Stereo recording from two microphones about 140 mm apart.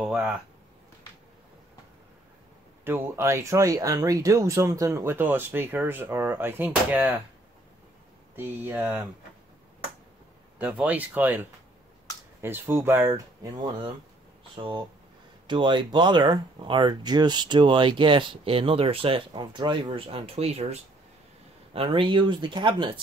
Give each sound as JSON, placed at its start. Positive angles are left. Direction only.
{"t": 0.0, "sound": "speech", "side_deg": -5}
{"t": 2.8, "sound": "speech", "side_deg": -20}
{"t": 8.6, "sound": "speech", "side_deg": -20}
{"t": 10.6, "sound": "speech", "side_deg": -10}
{"t": 21.7, "sound": "speech", "side_deg": -35}